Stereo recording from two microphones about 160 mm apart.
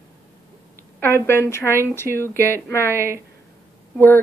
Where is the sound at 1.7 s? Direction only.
15° right (ahead or behind).